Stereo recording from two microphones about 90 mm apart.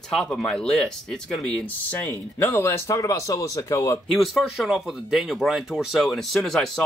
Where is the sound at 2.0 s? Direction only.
25° left (ahead or behind).